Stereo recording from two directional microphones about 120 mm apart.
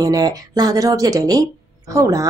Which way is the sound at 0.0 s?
30° right (ahead or behind).